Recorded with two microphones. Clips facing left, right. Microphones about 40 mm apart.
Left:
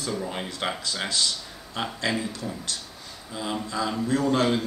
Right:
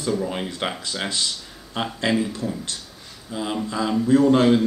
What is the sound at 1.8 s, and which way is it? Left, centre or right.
Speech, centre.